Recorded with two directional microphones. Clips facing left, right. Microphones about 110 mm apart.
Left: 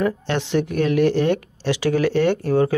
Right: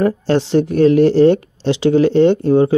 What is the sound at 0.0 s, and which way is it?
Speech, 35° right (ahead or behind).